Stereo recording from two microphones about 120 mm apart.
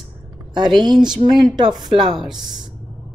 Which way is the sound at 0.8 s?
40° right (ahead or behind).